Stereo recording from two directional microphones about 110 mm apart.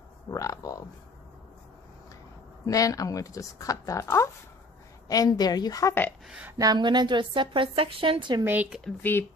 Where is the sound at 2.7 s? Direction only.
30° left (ahead or behind).